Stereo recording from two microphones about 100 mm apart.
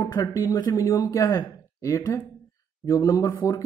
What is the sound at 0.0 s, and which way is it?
A man's voice, 30° left (ahead or behind).